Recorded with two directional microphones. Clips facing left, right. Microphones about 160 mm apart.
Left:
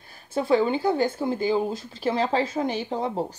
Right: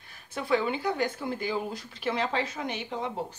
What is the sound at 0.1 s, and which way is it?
A woman's voice, 30° left (ahead or behind).